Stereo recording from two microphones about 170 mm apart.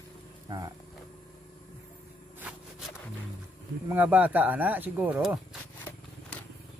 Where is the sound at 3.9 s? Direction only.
10° right (ahead or behind).